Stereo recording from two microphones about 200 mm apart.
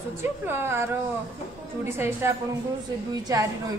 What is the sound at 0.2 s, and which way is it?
Speech, 10° right (ahead or behind).